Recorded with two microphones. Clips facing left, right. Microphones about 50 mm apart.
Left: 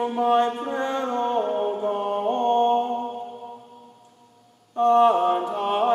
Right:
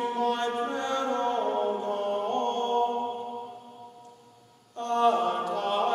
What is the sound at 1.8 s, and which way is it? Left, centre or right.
Mantra, left.